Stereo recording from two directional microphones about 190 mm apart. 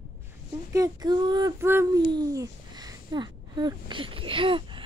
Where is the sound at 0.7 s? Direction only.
20° right (ahead or behind).